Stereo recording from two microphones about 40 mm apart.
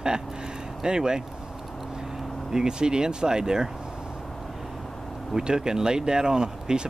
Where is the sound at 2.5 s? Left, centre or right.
Centre.